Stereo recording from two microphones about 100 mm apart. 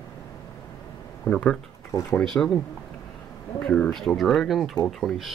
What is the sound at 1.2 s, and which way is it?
Speech, 10° left (ahead or behind).